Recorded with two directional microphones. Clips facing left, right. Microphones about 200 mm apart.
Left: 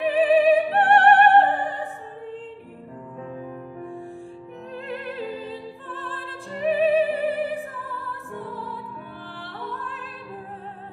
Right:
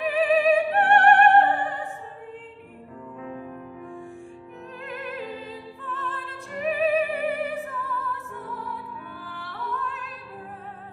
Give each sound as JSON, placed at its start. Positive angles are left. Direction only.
{"t": 0.0, "sound": "music", "side_deg": 30}
{"t": 1.4, "sound": "opera", "side_deg": 35}
{"t": 4.8, "sound": "opera", "side_deg": 30}
{"t": 8.1, "sound": "music", "side_deg": 30}